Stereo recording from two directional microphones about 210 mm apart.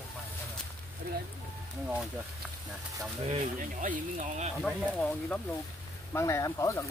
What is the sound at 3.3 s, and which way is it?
Speech, 35° right (ahead or behind).